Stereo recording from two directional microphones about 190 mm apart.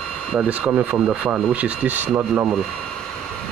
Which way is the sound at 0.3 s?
5° right (ahead or behind).